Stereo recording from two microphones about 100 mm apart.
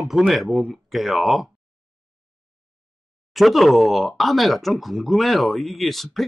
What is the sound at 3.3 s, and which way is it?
Speech, centre (ahead or behind).